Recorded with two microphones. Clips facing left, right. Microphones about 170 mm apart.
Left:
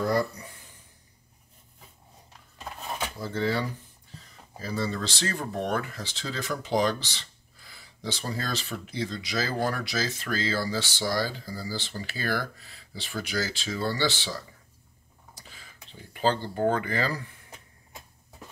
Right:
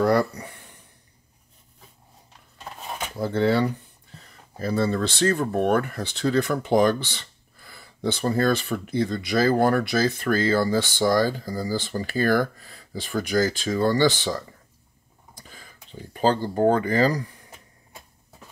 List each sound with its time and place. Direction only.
0.0 s speech: 70° right (ahead or behind)
3.2 s speech: 60° right (ahead or behind); by 17.3 s 40° right (ahead or behind)